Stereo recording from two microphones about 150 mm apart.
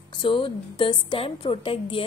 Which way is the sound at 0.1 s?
35° left (ahead or behind).